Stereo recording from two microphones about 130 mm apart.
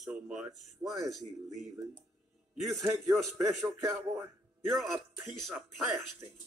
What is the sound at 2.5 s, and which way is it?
Speech, centre (ahead or behind).